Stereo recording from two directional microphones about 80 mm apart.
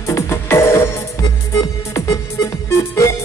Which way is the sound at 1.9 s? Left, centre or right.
Left.